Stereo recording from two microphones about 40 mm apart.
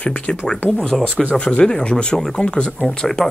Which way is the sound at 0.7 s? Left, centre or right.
Centre.